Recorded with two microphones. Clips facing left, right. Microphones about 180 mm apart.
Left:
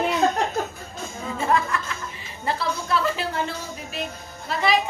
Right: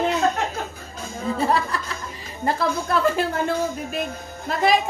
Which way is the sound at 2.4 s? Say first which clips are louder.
Right 4 dB; 50° right (ahead or behind).